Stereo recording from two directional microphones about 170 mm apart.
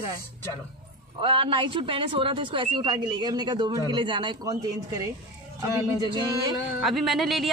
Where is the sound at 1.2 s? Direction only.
30° right (ahead or behind).